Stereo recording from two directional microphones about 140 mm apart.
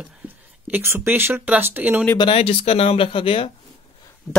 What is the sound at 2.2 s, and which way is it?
Speech, 45° left (ahead or behind).